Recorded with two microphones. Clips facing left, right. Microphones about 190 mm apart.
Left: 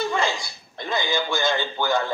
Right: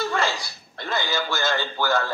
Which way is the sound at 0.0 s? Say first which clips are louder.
Left 1 dB; 15° left (ahead or behind).